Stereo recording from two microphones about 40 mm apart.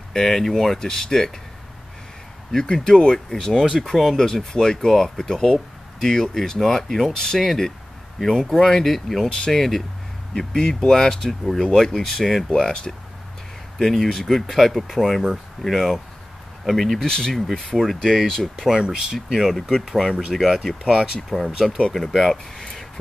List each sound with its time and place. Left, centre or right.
0.1 s speech: centre
2.5 s speech: centre
3.8 s speech: centre
4.3 s speech: centre
17.0 s speech: centre
18.7 s speech: centre
19.3 s speech: centre
21.3 s speech: centre
21.6 s speech: centre
21.9 s speech: centre
22.6 s a sound: centre